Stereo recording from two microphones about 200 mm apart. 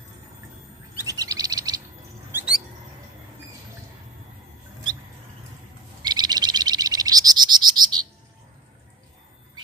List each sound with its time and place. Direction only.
0.9 s bird: 15° right (ahead or behind)
2.3 s bird: 5° right (ahead or behind)
6.0 s frog: 20° right (ahead or behind)